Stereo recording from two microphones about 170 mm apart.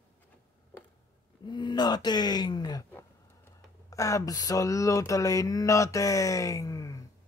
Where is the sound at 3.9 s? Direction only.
20° left (ahead or behind).